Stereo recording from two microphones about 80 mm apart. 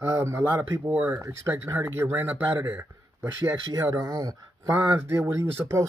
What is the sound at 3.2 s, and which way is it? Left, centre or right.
Speech, right.